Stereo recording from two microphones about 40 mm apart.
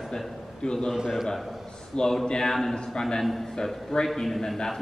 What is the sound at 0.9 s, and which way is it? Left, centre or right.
Speech, centre.